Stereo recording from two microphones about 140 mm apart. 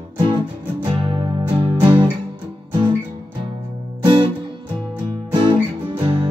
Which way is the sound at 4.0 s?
35° right (ahead or behind).